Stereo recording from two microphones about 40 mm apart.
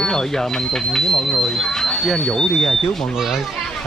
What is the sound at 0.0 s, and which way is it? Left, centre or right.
Speech, centre.